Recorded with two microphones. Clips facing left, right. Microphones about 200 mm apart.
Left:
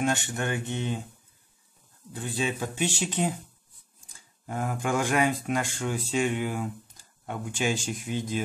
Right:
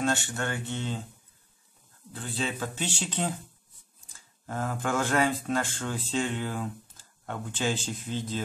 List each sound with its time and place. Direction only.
0.0 s speech: 15° left (ahead or behind)
2.1 s speech: 15° left (ahead or behind)